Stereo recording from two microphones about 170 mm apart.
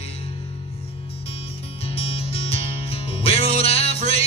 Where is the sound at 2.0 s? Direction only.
35° left (ahead or behind).